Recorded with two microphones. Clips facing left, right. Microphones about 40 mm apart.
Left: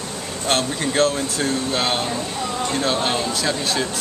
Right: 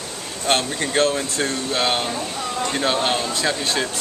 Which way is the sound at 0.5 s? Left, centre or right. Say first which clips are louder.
Even; centre.